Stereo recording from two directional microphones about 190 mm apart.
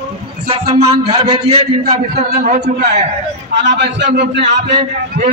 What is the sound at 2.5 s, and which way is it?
A man's voice, 60° right (ahead or behind).